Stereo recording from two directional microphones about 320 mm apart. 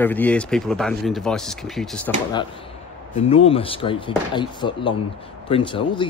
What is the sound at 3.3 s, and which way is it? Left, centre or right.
Speech, centre.